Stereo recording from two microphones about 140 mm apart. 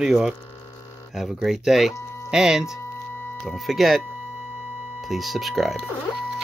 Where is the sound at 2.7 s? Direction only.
15° left (ahead or behind).